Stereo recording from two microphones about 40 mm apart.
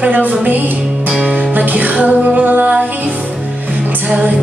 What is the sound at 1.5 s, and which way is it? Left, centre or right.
Music, right.